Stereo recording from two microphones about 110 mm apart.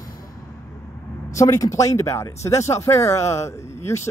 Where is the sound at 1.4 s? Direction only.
30° left (ahead or behind).